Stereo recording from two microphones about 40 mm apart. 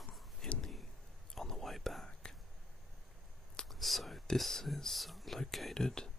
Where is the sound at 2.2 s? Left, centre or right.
Centre.